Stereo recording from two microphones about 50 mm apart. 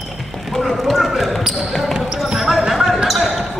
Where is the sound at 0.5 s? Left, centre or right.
Centre.